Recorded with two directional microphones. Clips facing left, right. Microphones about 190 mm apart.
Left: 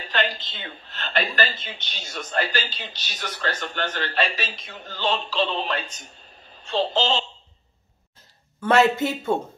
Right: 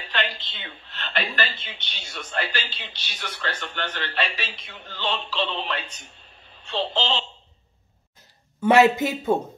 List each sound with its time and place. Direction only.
0.0 s a woman's voice: 40° left (ahead or behind)
8.5 s speech: 15° right (ahead or behind)